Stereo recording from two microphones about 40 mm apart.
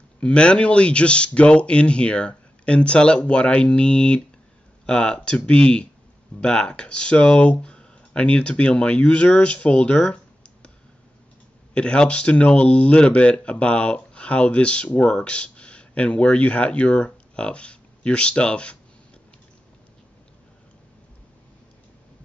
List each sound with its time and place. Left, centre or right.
0.2 s speech: left
11.7 s speech: left